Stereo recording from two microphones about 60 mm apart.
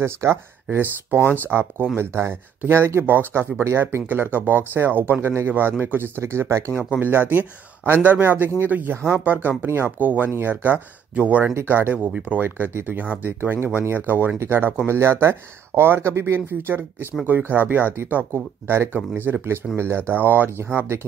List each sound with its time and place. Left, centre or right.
0.0 s speech: right
0.7 s speech: right
5.5 s speech: right
7.0 s speech: right
12.0 s speech: right
18.3 s speech: right